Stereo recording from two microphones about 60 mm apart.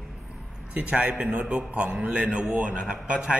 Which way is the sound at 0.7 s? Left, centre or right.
Right.